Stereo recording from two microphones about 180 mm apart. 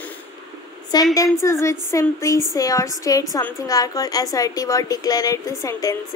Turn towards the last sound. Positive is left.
turn(degrees=20)  # may be behind; listen again after turning